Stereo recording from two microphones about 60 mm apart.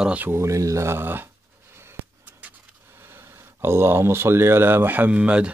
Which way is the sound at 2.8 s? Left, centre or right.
Right.